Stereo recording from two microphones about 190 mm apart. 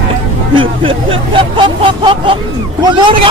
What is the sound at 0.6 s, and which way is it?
Speech, 25° right (ahead or behind).